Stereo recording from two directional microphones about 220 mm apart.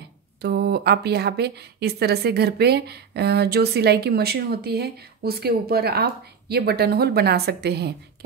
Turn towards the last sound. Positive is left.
turn(degrees=-45)  # may be behind; listen again after turning